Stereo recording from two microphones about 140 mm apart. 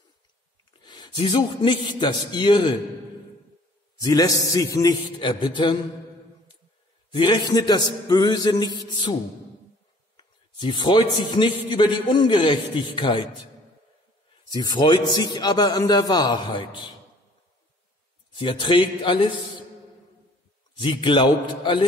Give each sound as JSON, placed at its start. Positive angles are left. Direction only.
{"t": 0.7, "sound": "a man's voice", "side_deg": 30}
{"t": 4.0, "sound": "a man's voice", "side_deg": 25}
{"t": 7.1, "sound": "a man's voice", "side_deg": 35}
{"t": 10.1, "sound": "a man's voice", "side_deg": 35}
{"t": 14.5, "sound": "a man's voice", "side_deg": 30}
{"t": 18.3, "sound": "a man's voice", "side_deg": 35}
{"t": 20.7, "sound": "a man's voice", "side_deg": 35}